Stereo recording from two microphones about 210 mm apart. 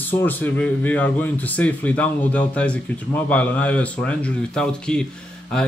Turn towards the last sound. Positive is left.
turn(degrees=5)  # may be behind; listen again after turning